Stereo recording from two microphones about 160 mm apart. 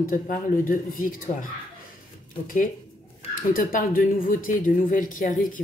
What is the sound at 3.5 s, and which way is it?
Speech, 55° left (ahead or behind).